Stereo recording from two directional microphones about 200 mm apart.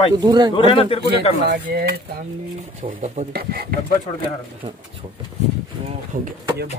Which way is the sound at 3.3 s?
50° right (ahead or behind).